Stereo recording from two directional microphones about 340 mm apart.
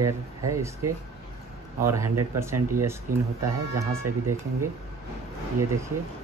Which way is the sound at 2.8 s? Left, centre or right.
Centre.